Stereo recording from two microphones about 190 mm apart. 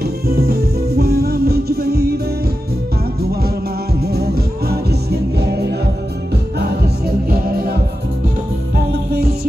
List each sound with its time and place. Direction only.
0.0 s music: 55° right (ahead or behind)
4.0 s music: 55° right (ahead or behind)
7.2 s music: 55° right (ahead or behind)
8.7 s music: 55° right (ahead or behind)